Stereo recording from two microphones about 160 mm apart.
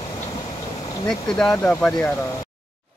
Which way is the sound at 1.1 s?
5° left (ahead or behind).